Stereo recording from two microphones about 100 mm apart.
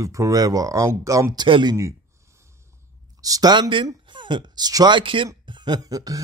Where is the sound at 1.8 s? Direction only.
30° right (ahead or behind).